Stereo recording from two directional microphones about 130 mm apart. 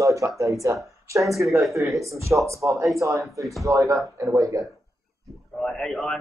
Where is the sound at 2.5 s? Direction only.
25° right (ahead or behind).